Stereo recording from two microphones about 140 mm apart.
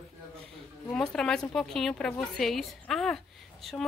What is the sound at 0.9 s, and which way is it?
A woman's voice, 5° left (ahead or behind).